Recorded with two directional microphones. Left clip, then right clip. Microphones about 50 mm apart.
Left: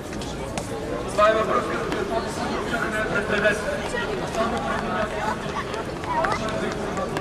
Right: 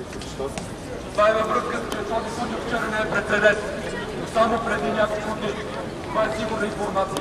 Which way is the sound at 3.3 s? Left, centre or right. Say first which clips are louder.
Right 4 dB; right.